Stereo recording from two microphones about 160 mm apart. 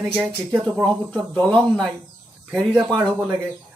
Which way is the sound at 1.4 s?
25° right (ahead or behind).